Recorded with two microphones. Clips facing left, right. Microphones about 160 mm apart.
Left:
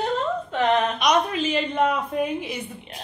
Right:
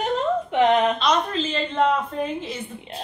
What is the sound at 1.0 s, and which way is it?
A woman's voice, 15° left (ahead or behind).